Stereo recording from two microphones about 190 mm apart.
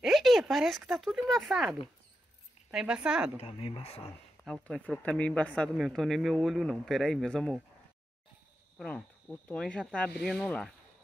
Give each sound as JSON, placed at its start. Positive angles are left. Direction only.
{"t": 0.0, "sound": "a man's voice", "side_deg": 0}
{"t": 3.3, "sound": "speech", "side_deg": 30}
{"t": 4.5, "sound": "a man's voice", "side_deg": 0}
{"t": 8.7, "sound": "a man's voice", "side_deg": 5}